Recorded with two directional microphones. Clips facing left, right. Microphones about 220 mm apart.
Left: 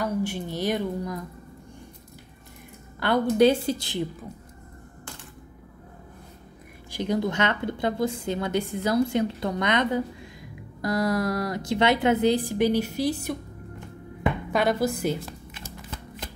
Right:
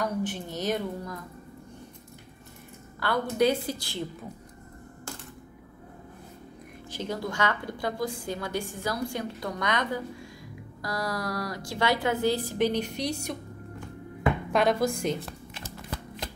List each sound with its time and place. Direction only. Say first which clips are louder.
0.0 s a woman's voice: left 3 dB; 10° left (ahead or behind)
3.0 s a woman's voice: left 6 dB; 25° left (ahead or behind)
6.9 s a woman's voice: left 7 dB; 15° left (ahead or behind)
14.5 s speech: left 1 dB; centre (ahead or behind)